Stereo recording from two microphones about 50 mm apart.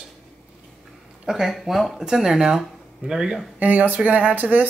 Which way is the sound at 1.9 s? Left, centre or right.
Centre.